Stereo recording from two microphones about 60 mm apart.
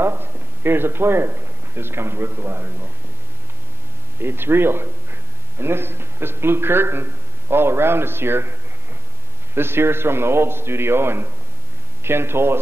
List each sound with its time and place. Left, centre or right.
0.0 s a man's voice: right
4.2 s a man's voice: right